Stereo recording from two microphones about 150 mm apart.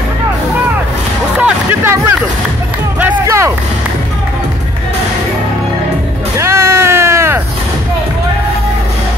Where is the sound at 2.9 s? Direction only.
15° right (ahead or behind).